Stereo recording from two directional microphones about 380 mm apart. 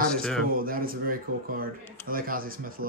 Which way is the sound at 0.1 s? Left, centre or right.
Centre.